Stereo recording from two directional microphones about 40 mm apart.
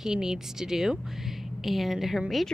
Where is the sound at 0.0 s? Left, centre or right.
Centre.